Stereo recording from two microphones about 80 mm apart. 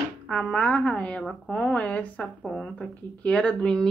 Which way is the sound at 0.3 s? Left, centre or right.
Centre.